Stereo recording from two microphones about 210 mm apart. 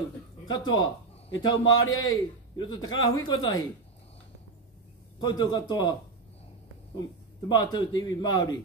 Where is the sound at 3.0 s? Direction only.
20° left (ahead or behind).